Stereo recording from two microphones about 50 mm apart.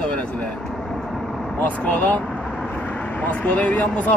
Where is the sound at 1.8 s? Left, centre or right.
Left.